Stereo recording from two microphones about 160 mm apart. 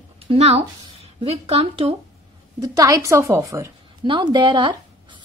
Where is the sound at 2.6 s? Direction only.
20° right (ahead or behind).